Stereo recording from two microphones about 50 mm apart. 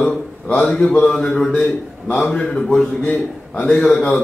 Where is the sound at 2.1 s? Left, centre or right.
Centre.